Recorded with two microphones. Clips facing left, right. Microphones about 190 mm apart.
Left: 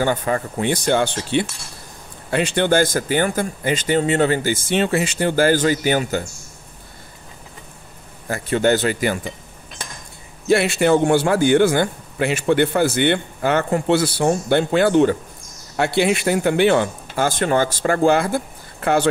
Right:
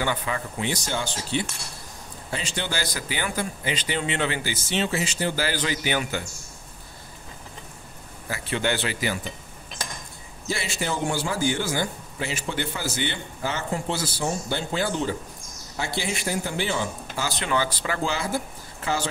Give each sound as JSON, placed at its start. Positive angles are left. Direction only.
{"t": 0.0, "sound": "a man's voice", "side_deg": 45}
{"t": 8.3, "sound": "speech", "side_deg": 45}
{"t": 10.5, "sound": "a man's voice", "side_deg": 65}